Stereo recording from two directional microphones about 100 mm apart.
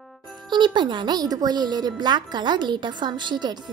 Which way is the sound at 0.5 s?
50° right (ahead or behind).